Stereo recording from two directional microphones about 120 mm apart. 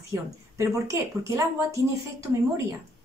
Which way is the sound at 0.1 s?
25° right (ahead or behind).